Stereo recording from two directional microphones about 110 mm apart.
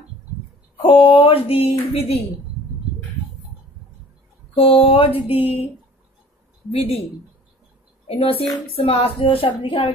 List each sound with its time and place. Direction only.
0.8 s music: 60° left (ahead or behind)
4.6 s music: 60° left (ahead or behind)
6.7 s music: 60° left (ahead or behind)
8.2 s music: 60° left (ahead or behind)